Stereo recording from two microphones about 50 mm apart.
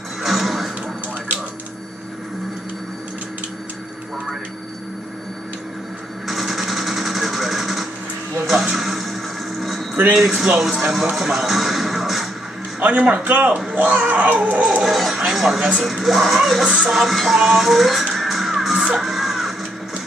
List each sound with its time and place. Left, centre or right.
0.2 s music: centre
6.2 s sewing machine: centre
8.7 s music: centre
10.1 s speech: centre
12.8 s baby cry: right
14.8 s music: centre
15.3 s a woman's voice: centre
15.8 s music: centre